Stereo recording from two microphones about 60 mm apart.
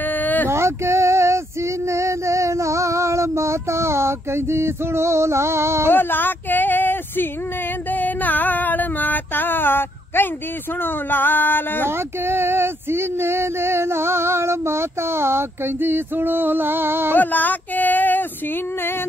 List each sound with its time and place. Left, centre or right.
0.1 s a sound: left
0.5 s female singing: right
5.9 s speech: left
7.9 s a sound: left
10.8 s speech: left
12.3 s male singing: right
17.1 s speech: left